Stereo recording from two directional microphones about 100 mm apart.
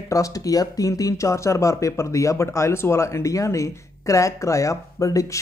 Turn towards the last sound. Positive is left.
turn(degrees=35)  # may be behind; listen again after turning